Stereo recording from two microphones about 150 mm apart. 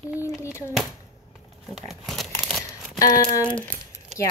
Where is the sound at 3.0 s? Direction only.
25° left (ahead or behind).